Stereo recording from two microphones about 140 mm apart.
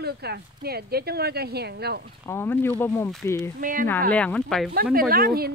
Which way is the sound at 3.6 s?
75° right (ahead or behind).